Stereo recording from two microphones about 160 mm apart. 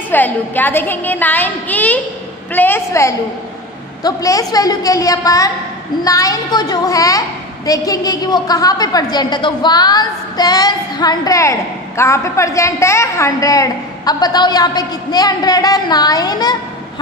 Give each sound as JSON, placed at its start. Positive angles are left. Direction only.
{"t": 0.1, "sound": "a woman's voice", "side_deg": 10}